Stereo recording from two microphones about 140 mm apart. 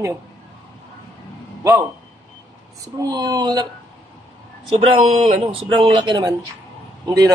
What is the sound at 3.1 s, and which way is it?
Speech, 30° right (ahead or behind).